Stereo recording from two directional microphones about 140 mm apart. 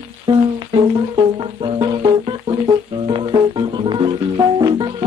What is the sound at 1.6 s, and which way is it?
Music, 35° right (ahead or behind).